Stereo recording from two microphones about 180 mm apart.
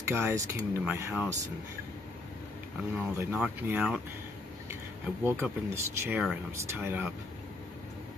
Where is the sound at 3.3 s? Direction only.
5° right (ahead or behind).